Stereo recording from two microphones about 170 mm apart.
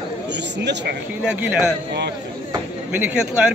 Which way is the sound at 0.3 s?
90° right.